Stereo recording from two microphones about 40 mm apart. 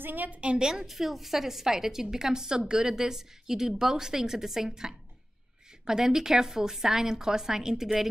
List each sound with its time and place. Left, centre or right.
0.0 s a woman's voice: right
0.6 s a woman's voice: centre
0.8 s a woman's voice: centre